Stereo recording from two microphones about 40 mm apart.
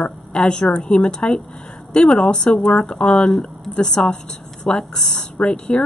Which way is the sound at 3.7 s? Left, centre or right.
Left.